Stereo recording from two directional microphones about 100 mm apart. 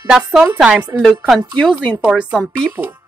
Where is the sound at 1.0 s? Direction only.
5° left (ahead or behind).